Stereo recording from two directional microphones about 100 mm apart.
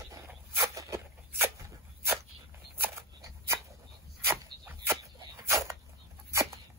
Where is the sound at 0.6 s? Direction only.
30° right (ahead or behind).